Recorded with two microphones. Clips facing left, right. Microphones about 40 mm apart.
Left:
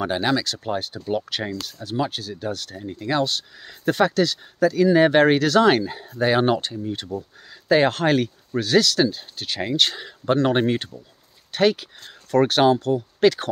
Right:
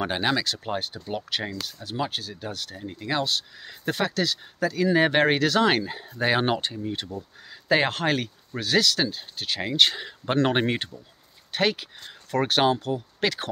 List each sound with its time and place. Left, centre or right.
0.0 s speech: right
1.0 s speech: centre
9.8 s speech: centre
11.5 s speech: centre